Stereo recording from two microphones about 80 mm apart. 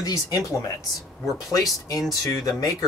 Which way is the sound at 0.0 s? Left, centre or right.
Left.